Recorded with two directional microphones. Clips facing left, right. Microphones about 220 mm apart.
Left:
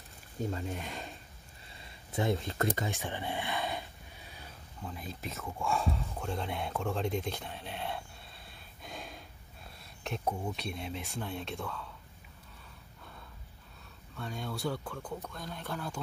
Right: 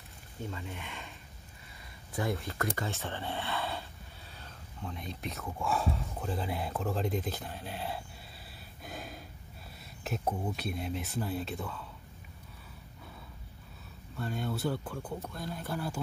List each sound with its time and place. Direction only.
0.4 s speech: 45° left (ahead or behind)
2.1 s speech: 25° left (ahead or behind)
2.8 s speech: 15° left (ahead or behind); by 8.0 s centre (ahead or behind)
8.8 s gasp: 5° right (ahead or behind)
10.0 s speech: 5° right (ahead or behind)
14.1 s speech: centre (ahead or behind)